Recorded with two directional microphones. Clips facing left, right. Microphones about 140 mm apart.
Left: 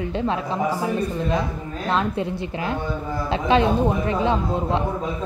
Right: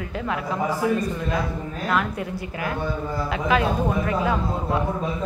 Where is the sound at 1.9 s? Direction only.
25° left (ahead or behind).